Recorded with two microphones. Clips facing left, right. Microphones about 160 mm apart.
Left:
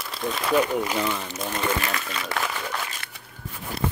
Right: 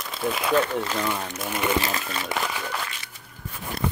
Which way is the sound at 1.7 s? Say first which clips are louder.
Right 2 dB; 30° right (ahead or behind).